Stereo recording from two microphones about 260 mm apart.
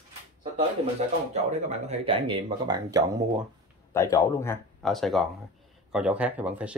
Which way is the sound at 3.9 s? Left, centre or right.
Centre.